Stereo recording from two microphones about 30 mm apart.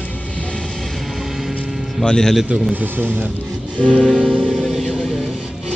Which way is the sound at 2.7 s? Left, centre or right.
Right.